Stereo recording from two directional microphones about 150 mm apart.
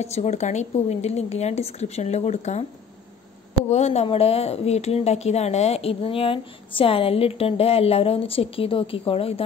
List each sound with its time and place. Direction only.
0.0 s a woman's voice: 45° left (ahead or behind)
3.6 s speech: 45° left (ahead or behind)